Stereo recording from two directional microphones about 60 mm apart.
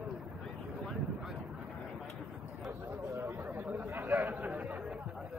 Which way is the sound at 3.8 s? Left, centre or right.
Right.